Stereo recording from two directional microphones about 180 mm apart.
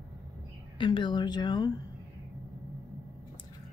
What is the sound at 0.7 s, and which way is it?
Speech, 25° left (ahead or behind).